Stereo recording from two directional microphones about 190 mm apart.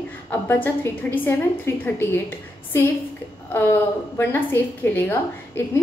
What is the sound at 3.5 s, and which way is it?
A woman's voice, 10° left (ahead or behind).